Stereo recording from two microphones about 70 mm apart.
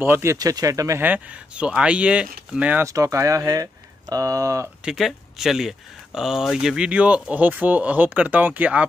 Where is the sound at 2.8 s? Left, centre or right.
Right.